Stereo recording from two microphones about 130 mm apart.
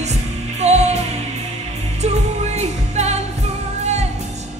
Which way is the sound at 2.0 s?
55° right (ahead or behind).